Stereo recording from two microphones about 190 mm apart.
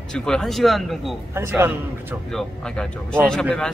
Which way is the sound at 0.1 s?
5° left (ahead or behind).